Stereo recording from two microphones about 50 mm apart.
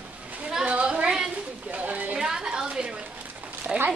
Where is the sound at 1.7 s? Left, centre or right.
Right.